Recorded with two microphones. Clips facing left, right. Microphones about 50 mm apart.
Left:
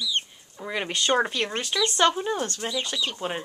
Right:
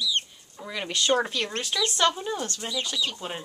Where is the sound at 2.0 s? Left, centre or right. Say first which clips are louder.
Left 3 dB; centre.